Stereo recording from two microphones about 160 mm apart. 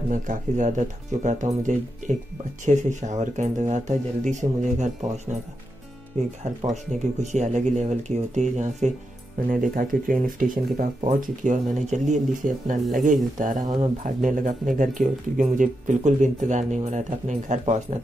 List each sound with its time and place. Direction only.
0.1 s speech: 50° right (ahead or behind)
9.5 s speech: 60° right (ahead or behind)